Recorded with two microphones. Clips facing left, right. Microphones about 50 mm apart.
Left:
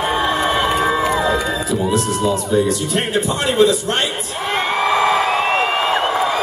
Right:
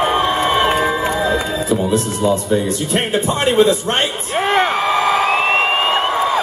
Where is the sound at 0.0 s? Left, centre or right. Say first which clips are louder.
Right 2 dB; right.